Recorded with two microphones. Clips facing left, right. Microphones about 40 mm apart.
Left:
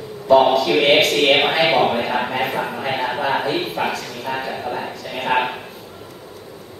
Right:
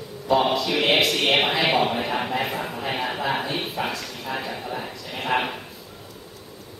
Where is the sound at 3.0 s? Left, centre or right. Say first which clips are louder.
Left 6 dB; centre.